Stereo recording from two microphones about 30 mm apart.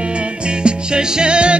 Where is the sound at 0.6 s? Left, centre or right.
Right.